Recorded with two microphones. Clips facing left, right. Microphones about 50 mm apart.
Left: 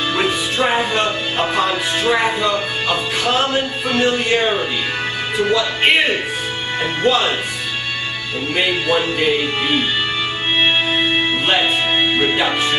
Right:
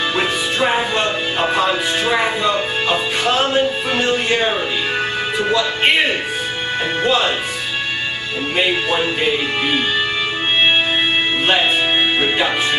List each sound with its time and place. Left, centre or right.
0.1 s music: centre
8.5 s speech: centre
11.0 s music: centre